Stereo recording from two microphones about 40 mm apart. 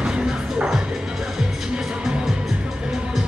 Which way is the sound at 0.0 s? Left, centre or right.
Right.